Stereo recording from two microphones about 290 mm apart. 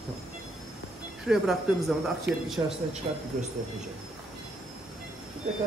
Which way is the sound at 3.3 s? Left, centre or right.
Right.